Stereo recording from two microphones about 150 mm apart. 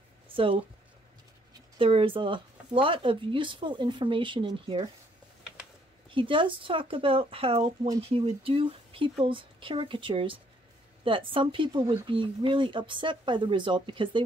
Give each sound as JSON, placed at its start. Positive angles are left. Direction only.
{"t": 1.8, "sound": "speech", "side_deg": -35}
{"t": 6.0, "sound": "speech", "side_deg": -35}